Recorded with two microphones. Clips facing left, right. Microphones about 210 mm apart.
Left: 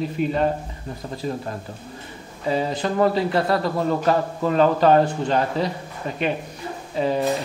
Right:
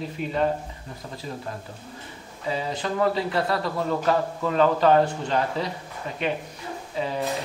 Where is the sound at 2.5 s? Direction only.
40° left (ahead or behind).